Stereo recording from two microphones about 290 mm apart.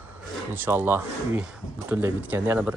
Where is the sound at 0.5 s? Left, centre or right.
Centre.